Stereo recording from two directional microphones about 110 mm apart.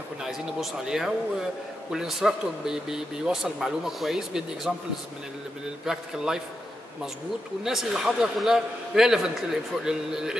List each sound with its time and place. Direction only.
0.2 s speech: 5° right (ahead or behind)
5.9 s speech: 5° right (ahead or behind)
7.6 s speech: 5° right (ahead or behind)